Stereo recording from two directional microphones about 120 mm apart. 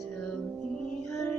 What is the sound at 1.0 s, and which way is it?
Music, 5° left (ahead or behind).